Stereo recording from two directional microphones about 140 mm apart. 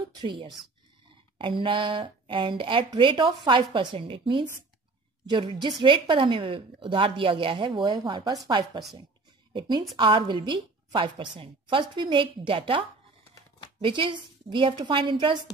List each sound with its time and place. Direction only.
0.1 s a woman's voice: 35° right (ahead or behind)